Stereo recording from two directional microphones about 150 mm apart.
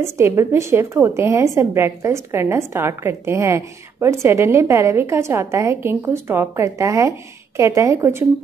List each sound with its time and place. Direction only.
0.0 s a woman's voice: 15° right (ahead or behind)